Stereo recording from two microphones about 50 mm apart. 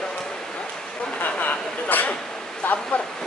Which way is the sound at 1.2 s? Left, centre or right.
Left.